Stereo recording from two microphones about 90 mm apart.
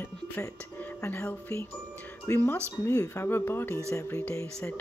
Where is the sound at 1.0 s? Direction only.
25° left (ahead or behind).